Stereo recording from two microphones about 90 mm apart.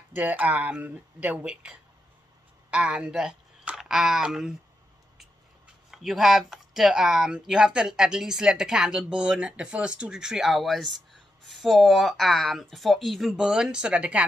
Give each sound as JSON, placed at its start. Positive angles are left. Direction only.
{"t": 0.1, "sound": "speech", "side_deg": -15}
{"t": 5.9, "sound": "speech", "side_deg": 0}